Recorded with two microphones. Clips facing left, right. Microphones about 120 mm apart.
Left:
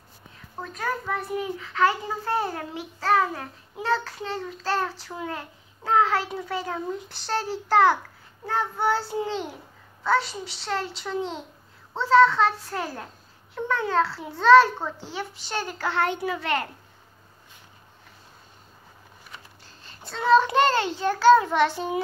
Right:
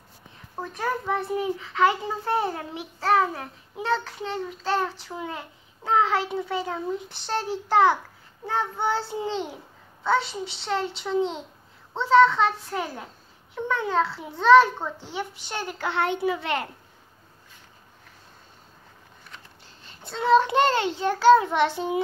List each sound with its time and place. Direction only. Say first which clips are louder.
0.7 s a child's voice: right 2 dB; 25° right (ahead or behind)
20.0 s a child's voice: even; 20° right (ahead or behind)